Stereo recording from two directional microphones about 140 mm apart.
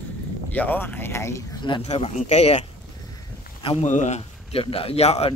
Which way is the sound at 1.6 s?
30° left (ahead or behind).